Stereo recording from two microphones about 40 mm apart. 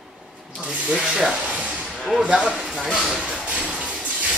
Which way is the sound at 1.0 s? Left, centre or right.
Centre.